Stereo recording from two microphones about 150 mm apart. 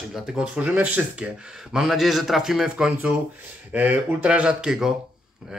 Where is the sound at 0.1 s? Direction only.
5° right (ahead or behind).